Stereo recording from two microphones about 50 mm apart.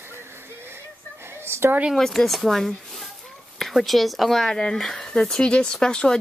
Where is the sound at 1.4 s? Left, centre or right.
Right.